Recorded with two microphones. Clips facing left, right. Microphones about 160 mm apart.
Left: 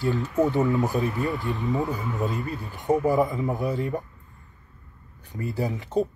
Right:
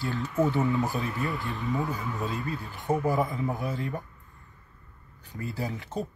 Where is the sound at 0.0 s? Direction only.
20° left (ahead or behind).